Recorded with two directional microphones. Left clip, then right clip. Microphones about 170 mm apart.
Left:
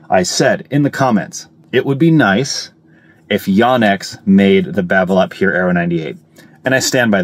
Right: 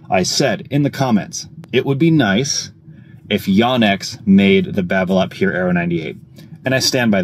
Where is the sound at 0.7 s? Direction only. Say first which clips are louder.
Left 4 dB; 45° left (ahead or behind).